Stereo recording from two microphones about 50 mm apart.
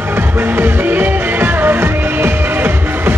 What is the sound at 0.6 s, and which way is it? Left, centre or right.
Music, right.